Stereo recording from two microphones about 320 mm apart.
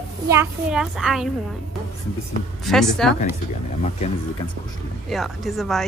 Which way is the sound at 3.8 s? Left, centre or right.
Left.